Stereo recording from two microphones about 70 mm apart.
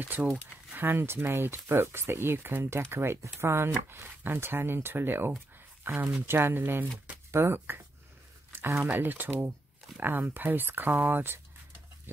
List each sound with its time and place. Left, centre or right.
0.1 s speech: right